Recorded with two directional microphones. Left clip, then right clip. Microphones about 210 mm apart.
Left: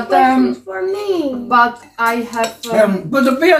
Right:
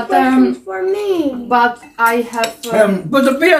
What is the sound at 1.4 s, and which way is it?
Speech, 15° left (ahead or behind).